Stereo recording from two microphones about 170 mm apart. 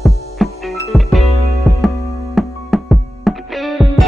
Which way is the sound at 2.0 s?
20° left (ahead or behind).